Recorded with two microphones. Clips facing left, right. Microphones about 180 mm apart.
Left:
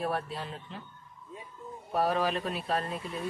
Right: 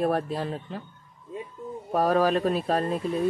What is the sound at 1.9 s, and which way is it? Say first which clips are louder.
Speech: right 6 dB; 45° right (ahead or behind).